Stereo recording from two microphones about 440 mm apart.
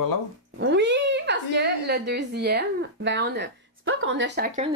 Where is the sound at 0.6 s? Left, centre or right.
Right.